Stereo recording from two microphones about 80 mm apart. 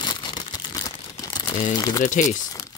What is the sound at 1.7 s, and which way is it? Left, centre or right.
Speech, left.